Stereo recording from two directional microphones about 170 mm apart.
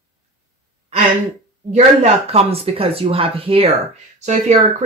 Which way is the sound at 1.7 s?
40° right (ahead or behind).